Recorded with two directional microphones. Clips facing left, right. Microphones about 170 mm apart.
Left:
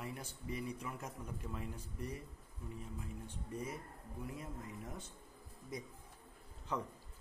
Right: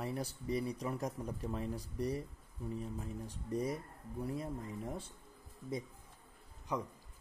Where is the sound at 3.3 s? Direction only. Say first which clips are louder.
Right 8 dB; 35° right (ahead or behind).